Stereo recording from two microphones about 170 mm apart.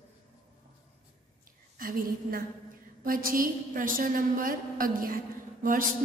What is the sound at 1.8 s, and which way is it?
A woman's voice, 55° right (ahead or behind).